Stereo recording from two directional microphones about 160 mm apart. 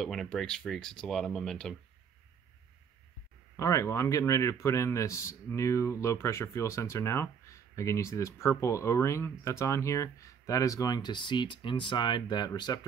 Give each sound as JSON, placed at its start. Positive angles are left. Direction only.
{"t": 0.0, "sound": "speech", "side_deg": 0}
{"t": 3.5, "sound": "a man's voice", "side_deg": 20}